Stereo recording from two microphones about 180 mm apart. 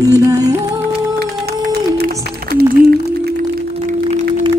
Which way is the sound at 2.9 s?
60° right (ahead or behind).